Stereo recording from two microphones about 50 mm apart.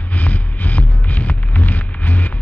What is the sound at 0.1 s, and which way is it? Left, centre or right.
Music, left.